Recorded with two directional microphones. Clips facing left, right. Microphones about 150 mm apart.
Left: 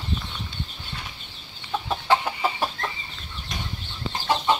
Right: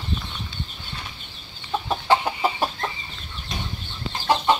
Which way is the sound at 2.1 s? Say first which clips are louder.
Right 2 dB; 25° right (ahead or behind).